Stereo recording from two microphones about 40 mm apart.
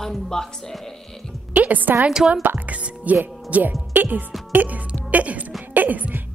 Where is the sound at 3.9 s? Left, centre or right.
Right.